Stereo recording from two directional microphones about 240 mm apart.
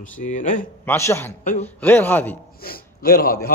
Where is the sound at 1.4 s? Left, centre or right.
Left.